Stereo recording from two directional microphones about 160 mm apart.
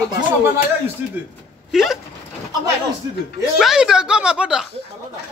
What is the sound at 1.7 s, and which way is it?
Speech, centre (ahead or behind).